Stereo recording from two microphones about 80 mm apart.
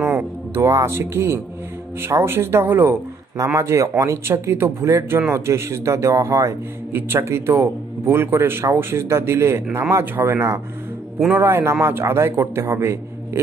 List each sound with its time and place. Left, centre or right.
0.0 s speech: right
3.5 s speech: right